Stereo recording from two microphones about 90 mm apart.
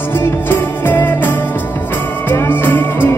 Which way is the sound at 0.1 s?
25° left (ahead or behind).